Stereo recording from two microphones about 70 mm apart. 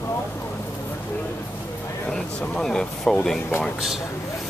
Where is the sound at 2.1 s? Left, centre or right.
Centre.